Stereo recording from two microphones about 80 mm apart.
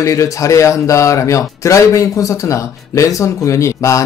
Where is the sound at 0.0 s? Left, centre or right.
Left.